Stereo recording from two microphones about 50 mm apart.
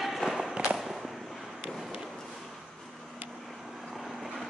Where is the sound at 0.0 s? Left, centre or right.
Centre.